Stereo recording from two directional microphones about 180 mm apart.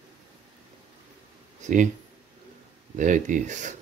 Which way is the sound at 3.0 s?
45° right (ahead or behind).